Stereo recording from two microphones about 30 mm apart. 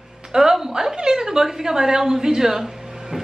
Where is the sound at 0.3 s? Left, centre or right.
Centre.